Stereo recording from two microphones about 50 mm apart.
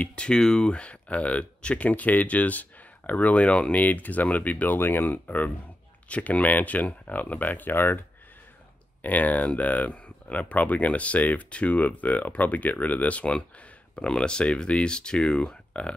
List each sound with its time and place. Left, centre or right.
0.1 s speech: centre
4.7 s speech: left
9.0 s speech: left